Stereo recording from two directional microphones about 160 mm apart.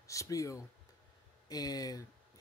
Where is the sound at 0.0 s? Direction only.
20° left (ahead or behind).